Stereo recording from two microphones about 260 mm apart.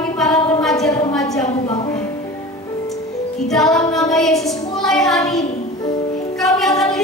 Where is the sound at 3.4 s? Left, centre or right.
Centre.